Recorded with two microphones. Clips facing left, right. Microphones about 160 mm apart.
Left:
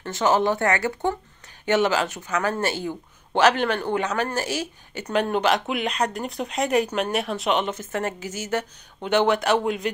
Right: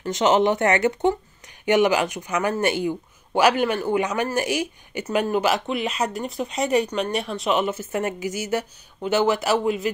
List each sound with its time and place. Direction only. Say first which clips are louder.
0.0 s speech: right 2 dB; 20° right (ahead or behind)
5.0 s speech: even; 5° right (ahead or behind)